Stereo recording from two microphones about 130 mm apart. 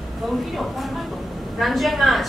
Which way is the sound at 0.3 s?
Centre (ahead or behind).